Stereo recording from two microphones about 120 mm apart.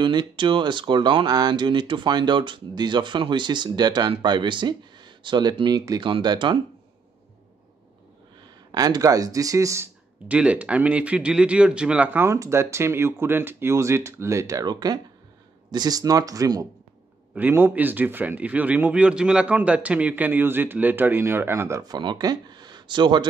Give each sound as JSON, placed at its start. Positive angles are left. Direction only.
{"t": 0.0, "sound": "speech", "side_deg": -40}
{"t": 8.7, "sound": "speech", "side_deg": -35}
{"t": 10.2, "sound": "speech", "side_deg": -10}
{"t": 17.3, "sound": "speech", "side_deg": -15}